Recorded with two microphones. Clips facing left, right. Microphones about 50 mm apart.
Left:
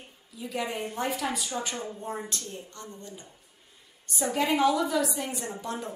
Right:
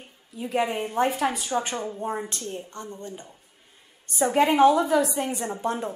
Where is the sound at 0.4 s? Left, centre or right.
Right.